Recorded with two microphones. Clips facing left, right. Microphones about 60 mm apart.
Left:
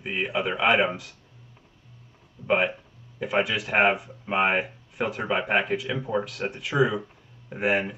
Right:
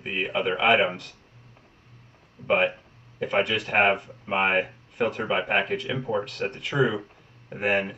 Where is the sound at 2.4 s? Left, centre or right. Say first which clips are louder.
Right 1 dB; centre.